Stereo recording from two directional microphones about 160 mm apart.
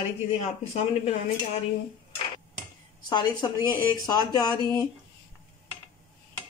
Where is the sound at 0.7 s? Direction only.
40° left (ahead or behind).